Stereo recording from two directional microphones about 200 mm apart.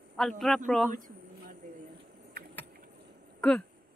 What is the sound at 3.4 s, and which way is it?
Speech, 5° left (ahead or behind).